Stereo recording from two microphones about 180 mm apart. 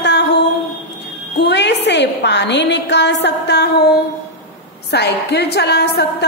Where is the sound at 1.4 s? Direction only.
70° left (ahead or behind).